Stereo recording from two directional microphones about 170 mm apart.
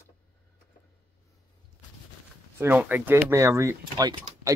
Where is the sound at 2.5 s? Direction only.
10° right (ahead or behind).